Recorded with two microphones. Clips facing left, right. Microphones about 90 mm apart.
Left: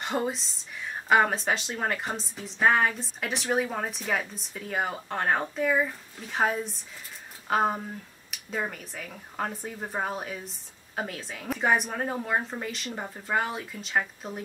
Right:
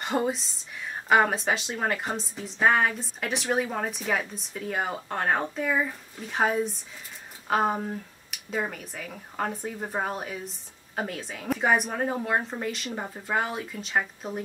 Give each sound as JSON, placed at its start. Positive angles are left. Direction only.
{"t": 0.0, "sound": "speech", "side_deg": 0}